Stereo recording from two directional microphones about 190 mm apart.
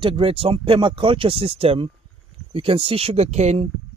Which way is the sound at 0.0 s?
30° right (ahead or behind).